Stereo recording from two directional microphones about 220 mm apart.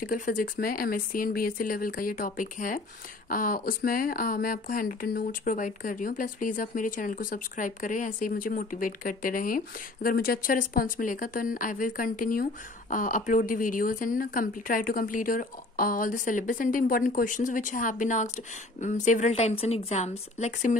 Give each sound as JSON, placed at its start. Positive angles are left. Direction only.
{"t": 0.0, "sound": "speech", "side_deg": 40}